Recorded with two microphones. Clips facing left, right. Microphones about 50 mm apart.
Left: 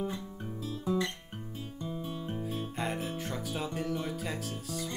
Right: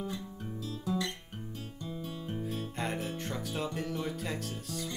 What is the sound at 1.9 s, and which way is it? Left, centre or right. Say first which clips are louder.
Music: left 2 dB; centre.